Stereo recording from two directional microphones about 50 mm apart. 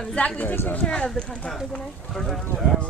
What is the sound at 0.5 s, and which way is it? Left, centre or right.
Speech, left.